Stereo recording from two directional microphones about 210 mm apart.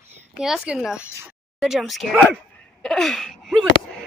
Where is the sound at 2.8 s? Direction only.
Centre (ahead or behind).